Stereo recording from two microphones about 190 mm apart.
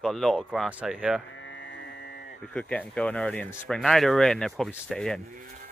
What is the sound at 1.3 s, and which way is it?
Music, 80° left.